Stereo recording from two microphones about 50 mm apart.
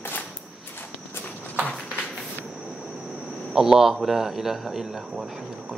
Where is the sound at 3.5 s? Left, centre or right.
Centre.